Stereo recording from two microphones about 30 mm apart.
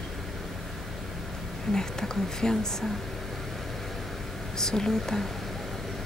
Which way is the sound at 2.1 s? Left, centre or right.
Left.